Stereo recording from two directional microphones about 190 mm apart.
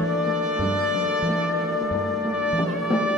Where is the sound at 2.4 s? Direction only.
5° right (ahead or behind).